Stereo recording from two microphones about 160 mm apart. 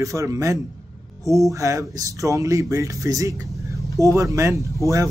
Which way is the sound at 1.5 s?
20° right (ahead or behind).